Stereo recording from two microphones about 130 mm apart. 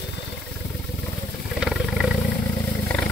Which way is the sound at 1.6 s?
Centre (ahead or behind).